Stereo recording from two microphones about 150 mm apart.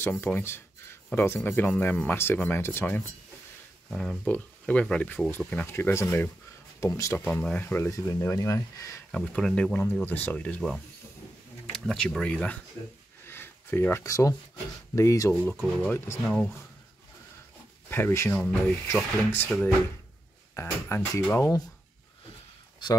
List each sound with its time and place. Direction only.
0.2 s speech: 15° left (ahead or behind)
3.9 s speech: centre (ahead or behind); by 7.2 s 20° left (ahead or behind)
7.2 s speech: 5° left (ahead or behind)
9.1 s speech: 5° left (ahead or behind)
13.2 s a sound: 15° left (ahead or behind)
15.0 s speech: 20° left (ahead or behind)
15.3 s speech: 5° left (ahead or behind)
17.8 s speech: 15° left (ahead or behind)
18.4 s speech: centre (ahead or behind)
19.3 s speech: 10° left (ahead or behind)